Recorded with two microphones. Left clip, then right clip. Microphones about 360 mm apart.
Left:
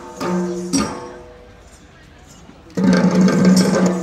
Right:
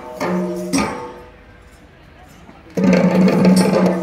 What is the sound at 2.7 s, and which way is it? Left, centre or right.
Music, right.